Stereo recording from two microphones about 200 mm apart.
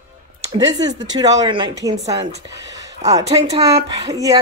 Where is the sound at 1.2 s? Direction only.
20° right (ahead or behind).